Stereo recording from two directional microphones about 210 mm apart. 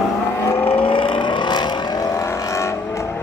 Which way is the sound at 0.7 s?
25° left (ahead or behind).